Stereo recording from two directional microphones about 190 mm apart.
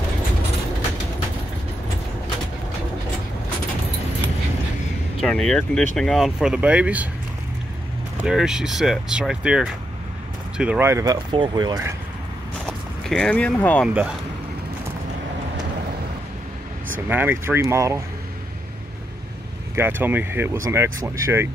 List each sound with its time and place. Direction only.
5.2 s speech: 5° left (ahead or behind)
8.2 s speech: 5° right (ahead or behind); by 11.9 s 20° right (ahead or behind)
12.6 s speech: 5° left (ahead or behind)
17.1 s speech: 10° right (ahead or behind)
19.7 s speech: 10° right (ahead or behind)